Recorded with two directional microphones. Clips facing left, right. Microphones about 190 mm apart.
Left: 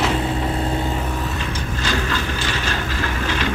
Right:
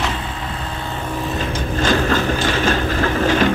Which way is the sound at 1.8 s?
50° right (ahead or behind).